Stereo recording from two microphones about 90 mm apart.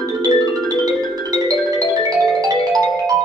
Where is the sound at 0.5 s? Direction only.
45° right (ahead or behind).